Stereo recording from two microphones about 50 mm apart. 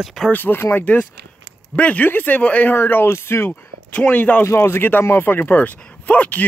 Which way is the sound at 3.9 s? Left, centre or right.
Left.